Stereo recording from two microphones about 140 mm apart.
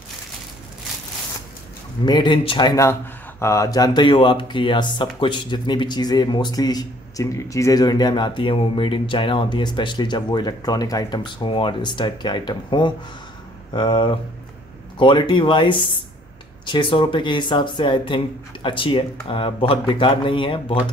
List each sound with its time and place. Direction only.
2.0 s speech: 35° left (ahead or behind)